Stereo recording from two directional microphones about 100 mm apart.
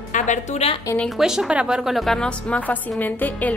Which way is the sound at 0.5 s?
85° left.